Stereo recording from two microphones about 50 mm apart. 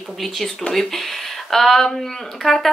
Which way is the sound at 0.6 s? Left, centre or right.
Centre.